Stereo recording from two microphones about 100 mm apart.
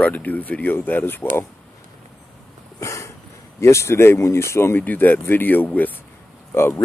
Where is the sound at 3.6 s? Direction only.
30° left (ahead or behind).